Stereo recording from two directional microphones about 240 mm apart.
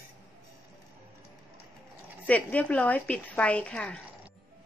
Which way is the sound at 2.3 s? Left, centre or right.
Centre.